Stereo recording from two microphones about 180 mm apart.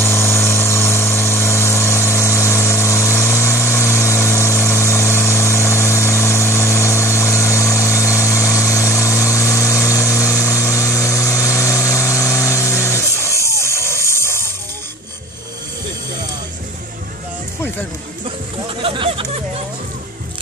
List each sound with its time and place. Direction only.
0.0 s vehicle: 15° left (ahead or behind)
13.6 s music: 15° left (ahead or behind)
18.8 s a sound: 30° right (ahead or behind)